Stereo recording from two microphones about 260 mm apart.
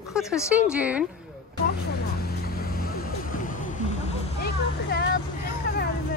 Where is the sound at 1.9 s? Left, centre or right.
Left.